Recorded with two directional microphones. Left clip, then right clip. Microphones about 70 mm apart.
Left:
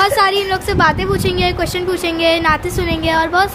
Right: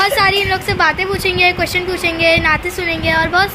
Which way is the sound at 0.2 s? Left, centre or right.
Left.